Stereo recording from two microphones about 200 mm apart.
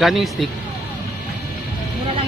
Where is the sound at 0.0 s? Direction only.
Centre (ahead or behind).